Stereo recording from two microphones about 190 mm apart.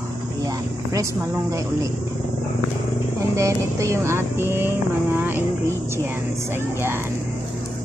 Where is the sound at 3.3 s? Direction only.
15° right (ahead or behind).